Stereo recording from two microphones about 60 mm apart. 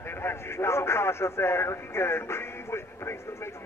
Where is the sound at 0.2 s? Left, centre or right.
Left.